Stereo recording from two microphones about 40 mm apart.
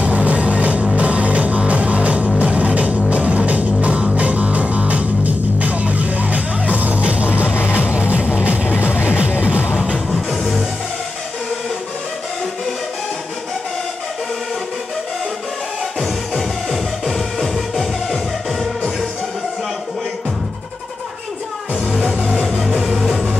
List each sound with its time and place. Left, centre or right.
0.0 s music: right
7.5 s music: left
7.8 s music: right
8.6 s music: left
9.4 s music: right
10.1 s music: centre
16.0 s music: centre
22.1 s music: centre